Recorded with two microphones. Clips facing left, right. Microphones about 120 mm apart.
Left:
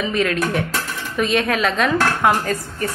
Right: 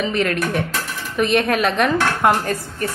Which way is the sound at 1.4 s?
50° right (ahead or behind).